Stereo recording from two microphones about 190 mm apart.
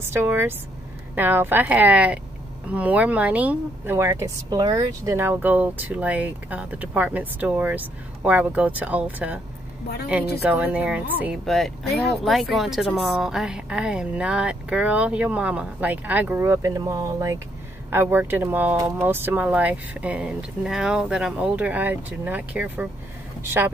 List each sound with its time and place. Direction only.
0.0 s speech: 10° right (ahead or behind)
10.4 s a woman's voice: 5° right (ahead or behind)